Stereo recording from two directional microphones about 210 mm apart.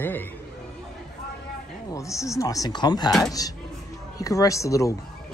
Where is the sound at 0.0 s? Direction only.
10° left (ahead or behind).